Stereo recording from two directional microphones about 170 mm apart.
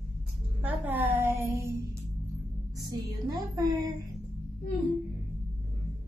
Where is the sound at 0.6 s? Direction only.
10° right (ahead or behind).